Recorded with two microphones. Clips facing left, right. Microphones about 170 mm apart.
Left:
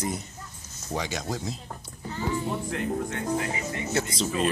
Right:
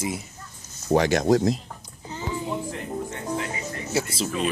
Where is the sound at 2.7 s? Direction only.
65° left (ahead or behind).